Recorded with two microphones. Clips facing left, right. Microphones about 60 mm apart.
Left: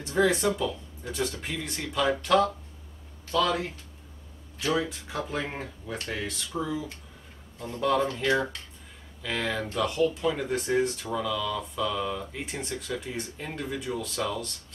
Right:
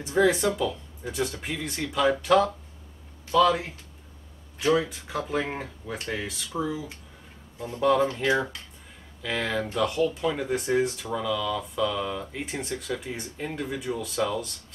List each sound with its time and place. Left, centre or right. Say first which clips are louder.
0.0 s speech: right 2 dB; centre
4.7 s speech: right 3 dB; centre
5.9 s speech: right 2 dB; centre
6.2 s speech: right 2 dB; centre